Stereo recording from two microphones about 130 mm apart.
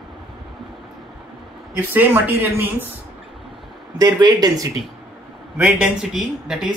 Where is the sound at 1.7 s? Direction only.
15° right (ahead or behind).